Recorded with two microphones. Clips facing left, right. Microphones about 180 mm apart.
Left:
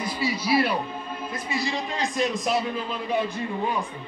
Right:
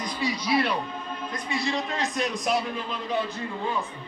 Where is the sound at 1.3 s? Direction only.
Centre (ahead or behind).